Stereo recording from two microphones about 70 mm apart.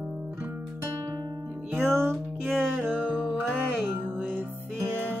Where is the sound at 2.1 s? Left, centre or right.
Centre.